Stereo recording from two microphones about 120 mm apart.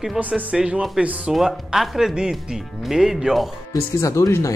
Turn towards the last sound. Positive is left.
turn(degrees=25)  # may be behind; listen again after turning